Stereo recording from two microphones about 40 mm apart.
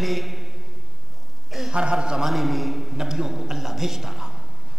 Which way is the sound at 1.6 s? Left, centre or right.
Right.